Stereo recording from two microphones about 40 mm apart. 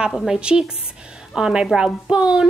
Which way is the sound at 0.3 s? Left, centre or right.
Right.